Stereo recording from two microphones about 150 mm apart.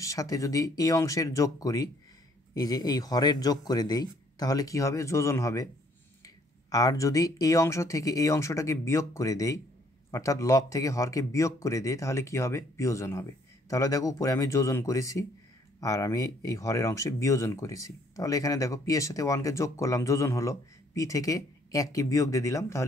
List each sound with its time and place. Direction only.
0.0 s speech: 20° left (ahead or behind)